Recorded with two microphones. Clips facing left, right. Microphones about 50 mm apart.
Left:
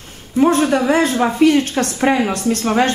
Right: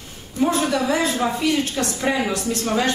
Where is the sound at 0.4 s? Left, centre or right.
Left.